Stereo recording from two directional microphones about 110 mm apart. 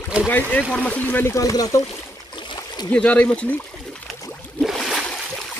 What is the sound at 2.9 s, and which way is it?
Speech, 15° left (ahead or behind).